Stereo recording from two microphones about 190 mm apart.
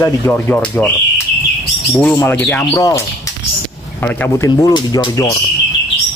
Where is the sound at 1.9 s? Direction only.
10° left (ahead or behind).